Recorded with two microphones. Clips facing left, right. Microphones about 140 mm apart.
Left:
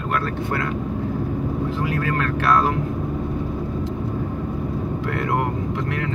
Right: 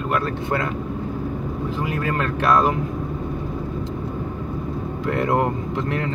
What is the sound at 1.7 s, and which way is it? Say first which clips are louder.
Speech: left 1 dB; 20° right (ahead or behind).